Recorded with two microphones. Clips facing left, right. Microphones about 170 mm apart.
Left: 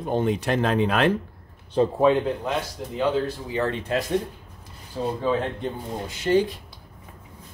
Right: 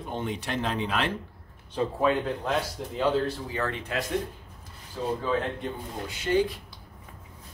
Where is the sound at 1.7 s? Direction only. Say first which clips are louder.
Left 7 dB; 35° left (ahead or behind).